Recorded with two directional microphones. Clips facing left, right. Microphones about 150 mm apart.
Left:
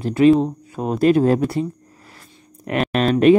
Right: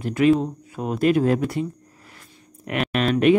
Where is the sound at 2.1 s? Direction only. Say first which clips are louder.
Left 2 dB; 35° left (ahead or behind).